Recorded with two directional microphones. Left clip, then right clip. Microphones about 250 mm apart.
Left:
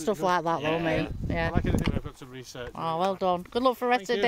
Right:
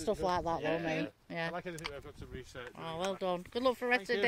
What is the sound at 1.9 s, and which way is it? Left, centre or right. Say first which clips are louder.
Speech: left 8 dB; left.